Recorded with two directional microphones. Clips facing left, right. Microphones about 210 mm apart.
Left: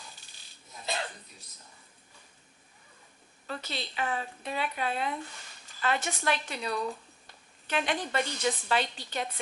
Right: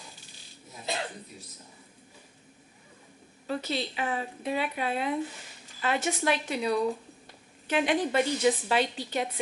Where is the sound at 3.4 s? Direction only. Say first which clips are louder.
Right 7 dB; 5° right (ahead or behind).